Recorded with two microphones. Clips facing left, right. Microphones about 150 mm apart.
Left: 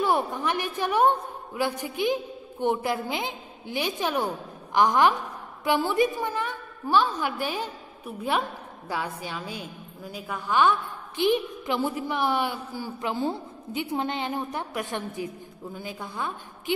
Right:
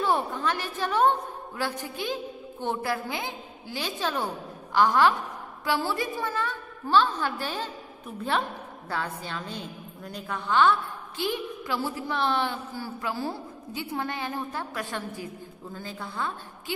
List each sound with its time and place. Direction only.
0.0 s a woman's voice: 10° left (ahead or behind)